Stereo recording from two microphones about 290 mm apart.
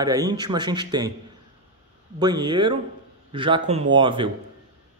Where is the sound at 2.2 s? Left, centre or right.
Centre.